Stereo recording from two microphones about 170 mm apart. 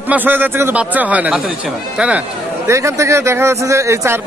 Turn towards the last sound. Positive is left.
turn(degrees=-15)  # may be behind; listen again after turning